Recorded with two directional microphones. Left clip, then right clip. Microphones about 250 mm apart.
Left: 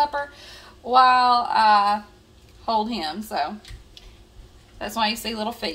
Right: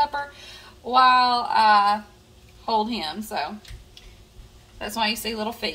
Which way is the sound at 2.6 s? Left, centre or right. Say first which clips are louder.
Even; left.